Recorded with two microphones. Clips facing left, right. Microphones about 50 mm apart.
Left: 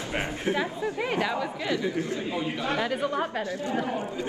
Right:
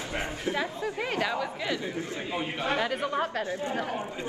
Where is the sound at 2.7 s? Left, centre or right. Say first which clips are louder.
Left 1 dB; centre.